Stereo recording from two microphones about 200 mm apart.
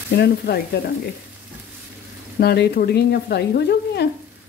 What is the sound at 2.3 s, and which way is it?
Speech, 55° left (ahead or behind).